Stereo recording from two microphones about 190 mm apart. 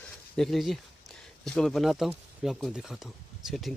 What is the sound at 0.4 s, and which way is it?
Speech, centre (ahead or behind).